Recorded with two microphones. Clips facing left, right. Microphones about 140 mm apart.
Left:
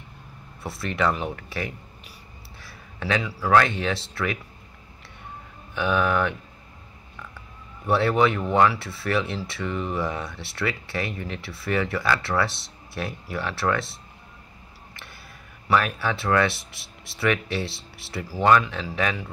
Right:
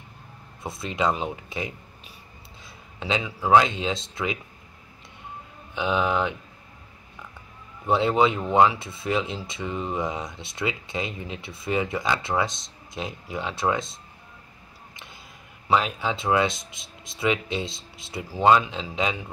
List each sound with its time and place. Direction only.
0.7 s speech: 20° right (ahead or behind)
5.8 s speech: 20° right (ahead or behind)
7.8 s speech: 20° right (ahead or behind)
15.7 s speech: 20° right (ahead or behind)